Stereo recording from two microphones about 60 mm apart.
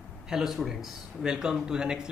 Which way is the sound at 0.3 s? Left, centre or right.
Centre.